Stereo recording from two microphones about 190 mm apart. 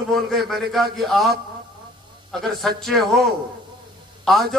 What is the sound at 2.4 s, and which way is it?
A man's voice, centre (ahead or behind).